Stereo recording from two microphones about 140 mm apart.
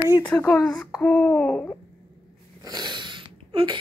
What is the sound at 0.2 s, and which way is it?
A child's voice, 10° left (ahead or behind).